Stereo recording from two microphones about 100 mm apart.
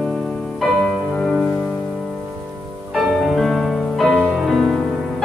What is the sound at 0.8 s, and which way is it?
Music, 5° left (ahead or behind).